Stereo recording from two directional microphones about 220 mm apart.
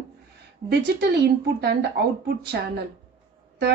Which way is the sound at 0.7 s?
50° right (ahead or behind).